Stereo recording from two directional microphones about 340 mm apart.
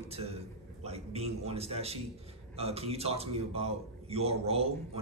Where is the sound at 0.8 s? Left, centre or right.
Centre.